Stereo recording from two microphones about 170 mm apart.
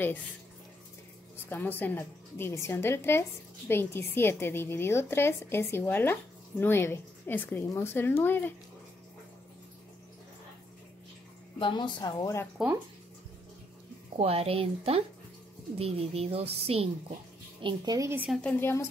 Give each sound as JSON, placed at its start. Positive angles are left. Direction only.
{"t": 1.4, "sound": "a woman's voice", "side_deg": 10}
{"t": 11.6, "sound": "speech", "side_deg": 25}
{"t": 12.5, "sound": "speech", "side_deg": -10}
{"t": 14.1, "sound": "speech", "side_deg": -35}
{"t": 18.3, "sound": "a woman's voice", "side_deg": 5}